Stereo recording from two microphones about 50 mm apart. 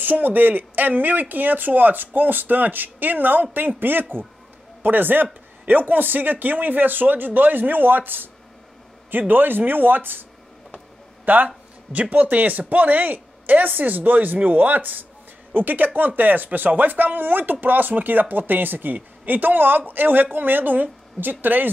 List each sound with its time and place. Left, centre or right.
0.0 s speech: right
9.3 s speech: right
11.2 s speech: right